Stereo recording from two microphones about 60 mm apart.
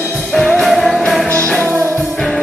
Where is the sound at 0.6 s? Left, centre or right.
Centre.